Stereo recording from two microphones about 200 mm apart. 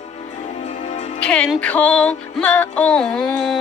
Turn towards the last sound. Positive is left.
turn(degrees=0)  # may be behind; listen again after turning